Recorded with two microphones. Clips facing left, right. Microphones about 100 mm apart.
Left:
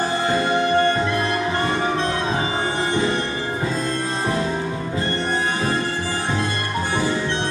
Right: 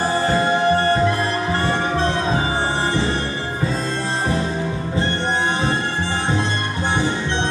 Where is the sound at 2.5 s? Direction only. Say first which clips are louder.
Right 1 dB; 30° right (ahead or behind).